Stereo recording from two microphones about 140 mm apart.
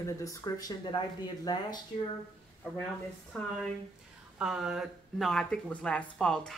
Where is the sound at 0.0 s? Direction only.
20° left (ahead or behind).